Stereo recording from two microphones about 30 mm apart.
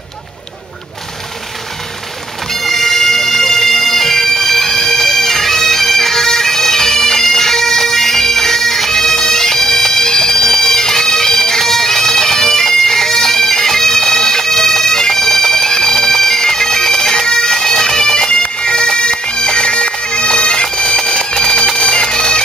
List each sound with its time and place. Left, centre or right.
2.5 s bagpipes: centre
21.3 s a sound: left
21.8 s bagpipes: left